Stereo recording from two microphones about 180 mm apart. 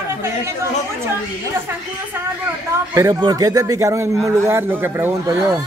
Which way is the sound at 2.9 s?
20° right (ahead or behind).